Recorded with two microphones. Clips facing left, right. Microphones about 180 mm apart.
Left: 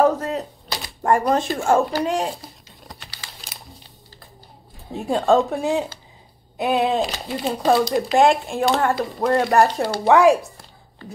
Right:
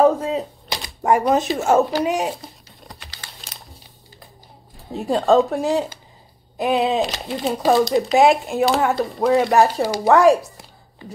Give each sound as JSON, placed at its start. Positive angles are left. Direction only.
{"t": 0.0, "sound": "speech", "side_deg": -10}
{"t": 2.4, "sound": "a sound", "side_deg": 0}
{"t": 5.1, "sound": "speech", "side_deg": 0}